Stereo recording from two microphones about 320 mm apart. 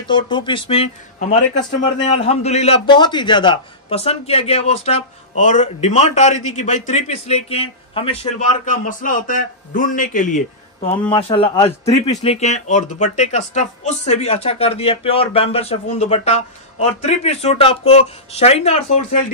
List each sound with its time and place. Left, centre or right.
0.1 s speech: centre